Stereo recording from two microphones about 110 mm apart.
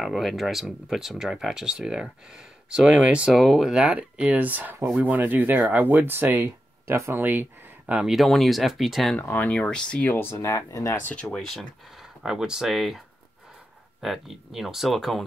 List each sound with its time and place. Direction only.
0.0 s speech: centre (ahead or behind)
9.2 s speech: 15° left (ahead or behind)
10.1 s speech: 25° left (ahead or behind)
11.2 s speech: centre (ahead or behind)
14.0 s speech: centre (ahead or behind)